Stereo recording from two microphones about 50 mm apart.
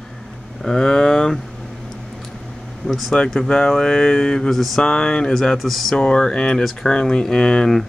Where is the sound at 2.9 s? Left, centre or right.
Centre.